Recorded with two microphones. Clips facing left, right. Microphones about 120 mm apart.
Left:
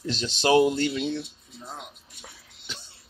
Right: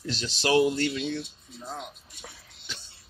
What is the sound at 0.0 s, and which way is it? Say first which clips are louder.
Speech: left 4 dB; 25° left (ahead or behind).